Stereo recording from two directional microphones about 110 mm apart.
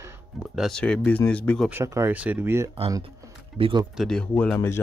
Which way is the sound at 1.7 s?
25° right (ahead or behind).